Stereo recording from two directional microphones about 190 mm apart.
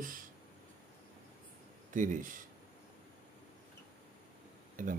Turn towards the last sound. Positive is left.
turn(degrees=-45)  # may be behind; listen again after turning